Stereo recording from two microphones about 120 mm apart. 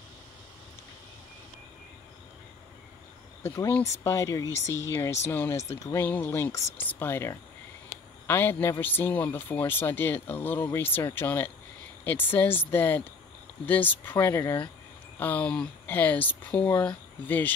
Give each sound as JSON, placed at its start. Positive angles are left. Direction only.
{"t": 3.6, "sound": "speech", "side_deg": 20}